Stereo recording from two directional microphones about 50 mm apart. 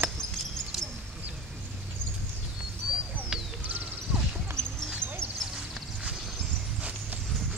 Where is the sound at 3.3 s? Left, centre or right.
Centre.